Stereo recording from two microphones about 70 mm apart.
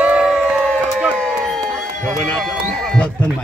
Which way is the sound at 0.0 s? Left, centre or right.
Centre.